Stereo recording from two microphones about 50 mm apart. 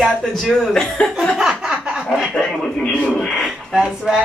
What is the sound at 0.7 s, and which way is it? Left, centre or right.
Speech, centre.